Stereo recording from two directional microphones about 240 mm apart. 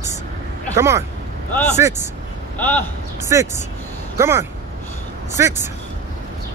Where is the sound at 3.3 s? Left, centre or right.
Centre.